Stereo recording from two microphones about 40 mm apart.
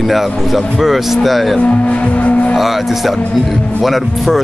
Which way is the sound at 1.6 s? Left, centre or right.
Left.